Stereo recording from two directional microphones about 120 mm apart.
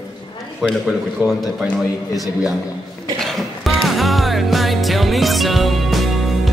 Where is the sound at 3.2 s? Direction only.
5° left (ahead or behind).